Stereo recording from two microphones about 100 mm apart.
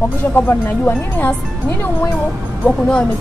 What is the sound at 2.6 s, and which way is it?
Speech, 10° left (ahead or behind).